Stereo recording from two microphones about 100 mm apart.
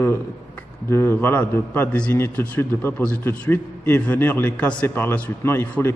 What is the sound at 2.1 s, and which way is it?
A man's voice, 25° left (ahead or behind).